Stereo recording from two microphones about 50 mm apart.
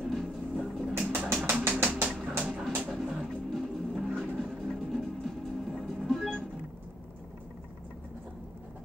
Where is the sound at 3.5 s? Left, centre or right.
Centre.